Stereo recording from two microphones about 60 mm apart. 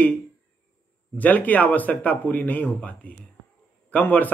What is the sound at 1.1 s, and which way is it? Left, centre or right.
Speech, left.